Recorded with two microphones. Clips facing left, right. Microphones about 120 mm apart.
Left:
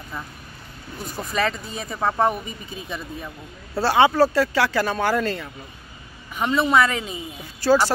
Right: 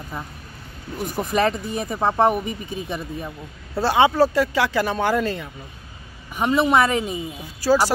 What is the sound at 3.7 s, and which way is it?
Speech, 15° right (ahead or behind).